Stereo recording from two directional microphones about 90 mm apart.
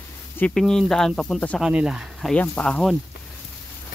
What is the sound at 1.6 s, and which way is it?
Speech, 10° right (ahead or behind).